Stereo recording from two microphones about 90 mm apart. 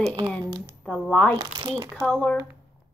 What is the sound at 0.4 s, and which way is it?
Typing, 45° right (ahead or behind).